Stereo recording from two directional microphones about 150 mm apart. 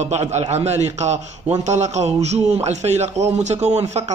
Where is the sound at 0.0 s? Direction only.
50° right (ahead or behind).